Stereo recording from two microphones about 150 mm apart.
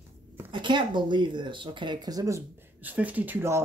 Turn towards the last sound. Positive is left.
turn(degrees=-15)  # may be behind; listen again after turning